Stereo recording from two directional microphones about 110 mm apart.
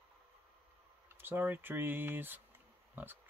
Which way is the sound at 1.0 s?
20° right (ahead or behind).